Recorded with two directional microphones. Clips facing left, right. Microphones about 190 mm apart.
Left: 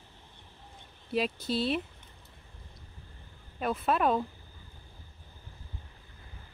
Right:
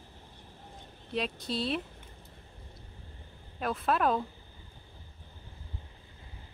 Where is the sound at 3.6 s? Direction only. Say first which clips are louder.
Left 1 dB; centre (ahead or behind).